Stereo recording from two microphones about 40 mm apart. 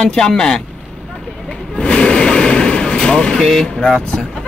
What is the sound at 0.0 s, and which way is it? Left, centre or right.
Speech, centre.